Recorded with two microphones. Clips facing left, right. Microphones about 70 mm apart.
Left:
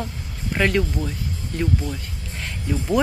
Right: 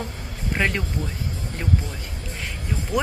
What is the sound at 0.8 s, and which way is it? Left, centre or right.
Speech, right.